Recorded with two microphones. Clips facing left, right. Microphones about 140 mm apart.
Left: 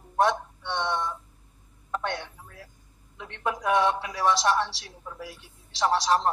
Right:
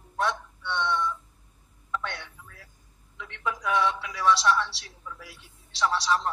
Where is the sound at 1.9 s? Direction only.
40° left (ahead or behind).